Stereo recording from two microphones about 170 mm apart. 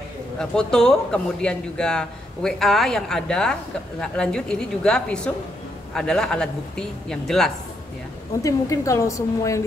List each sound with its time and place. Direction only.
0.4 s a man's voice: 5° left (ahead or behind)
8.4 s a woman's voice: 20° left (ahead or behind)